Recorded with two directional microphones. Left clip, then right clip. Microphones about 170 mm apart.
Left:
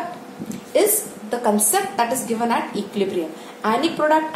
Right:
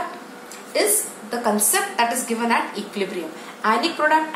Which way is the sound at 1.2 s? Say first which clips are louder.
Left 2 dB; 55° left (ahead or behind).